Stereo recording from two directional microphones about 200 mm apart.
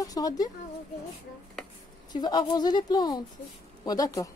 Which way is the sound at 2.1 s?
20° left (ahead or behind).